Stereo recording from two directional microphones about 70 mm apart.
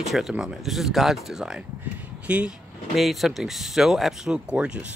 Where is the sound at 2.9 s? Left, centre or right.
Centre.